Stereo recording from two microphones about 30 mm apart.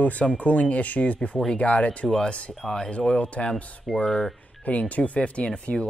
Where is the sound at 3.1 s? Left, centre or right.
Left.